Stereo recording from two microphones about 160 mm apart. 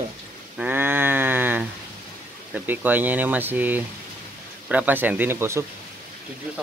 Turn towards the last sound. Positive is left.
turn(degrees=-15)  # may be behind; listen again after turning